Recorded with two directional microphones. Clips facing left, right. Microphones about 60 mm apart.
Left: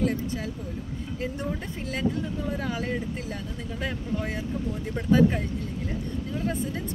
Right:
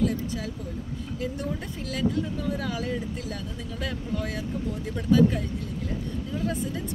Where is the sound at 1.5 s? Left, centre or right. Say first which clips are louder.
Left 1 dB; left.